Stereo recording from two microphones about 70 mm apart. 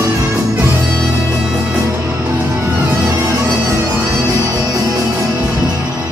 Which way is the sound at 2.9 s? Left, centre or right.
Right.